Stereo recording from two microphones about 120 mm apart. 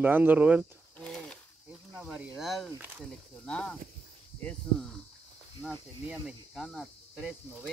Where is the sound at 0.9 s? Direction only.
5° left (ahead or behind).